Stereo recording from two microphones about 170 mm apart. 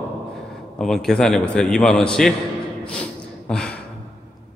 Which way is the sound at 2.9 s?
5° left (ahead or behind).